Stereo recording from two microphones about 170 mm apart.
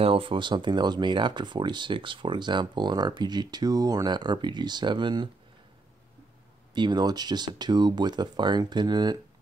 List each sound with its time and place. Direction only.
0.0 s speech: 30° right (ahead or behind)
6.7 s speech: 25° right (ahead or behind)